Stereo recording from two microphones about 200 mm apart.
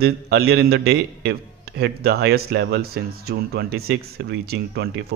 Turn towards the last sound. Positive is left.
turn(degrees=-55)  # may be behind; listen again after turning